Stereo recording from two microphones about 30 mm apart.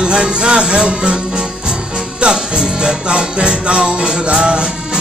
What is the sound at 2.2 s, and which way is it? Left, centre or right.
Music, right.